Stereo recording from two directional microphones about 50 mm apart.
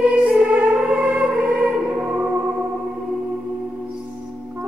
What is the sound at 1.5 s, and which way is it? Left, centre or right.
Music, centre.